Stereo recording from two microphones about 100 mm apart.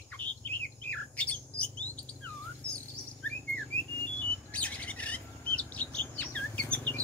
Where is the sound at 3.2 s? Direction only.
15° left (ahead or behind).